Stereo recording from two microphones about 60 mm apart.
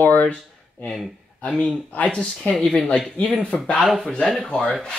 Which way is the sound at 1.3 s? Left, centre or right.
Left.